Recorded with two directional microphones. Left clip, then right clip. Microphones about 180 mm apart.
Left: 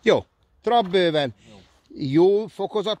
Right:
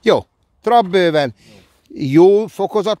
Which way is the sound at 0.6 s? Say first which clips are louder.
Right 7 dB; 40° right (ahead or behind).